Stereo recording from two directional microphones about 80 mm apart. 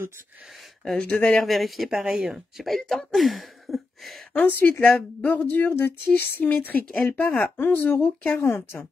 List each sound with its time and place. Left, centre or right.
0.9 s speech: centre
4.6 s speech: left
8.4 s speech: left